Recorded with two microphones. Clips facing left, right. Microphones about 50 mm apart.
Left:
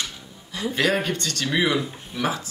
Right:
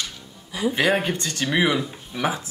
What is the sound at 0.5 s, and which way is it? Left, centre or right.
A woman's voice, centre.